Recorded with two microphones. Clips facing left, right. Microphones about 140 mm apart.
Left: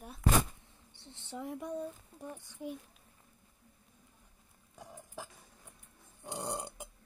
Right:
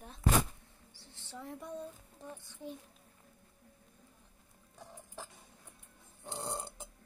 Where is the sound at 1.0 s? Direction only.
20° left (ahead or behind).